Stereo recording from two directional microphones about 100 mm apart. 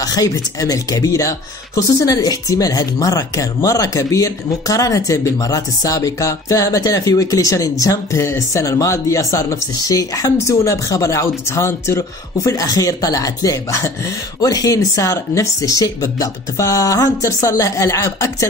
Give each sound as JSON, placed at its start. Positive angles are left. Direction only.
{"t": 0.0, "sound": "speech", "side_deg": 35}